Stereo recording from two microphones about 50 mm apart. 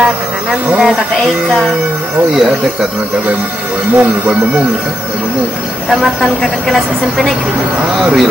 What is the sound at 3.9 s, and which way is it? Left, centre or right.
Speech, right.